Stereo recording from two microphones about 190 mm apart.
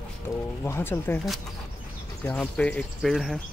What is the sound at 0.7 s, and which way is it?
Speech, 15° left (ahead or behind).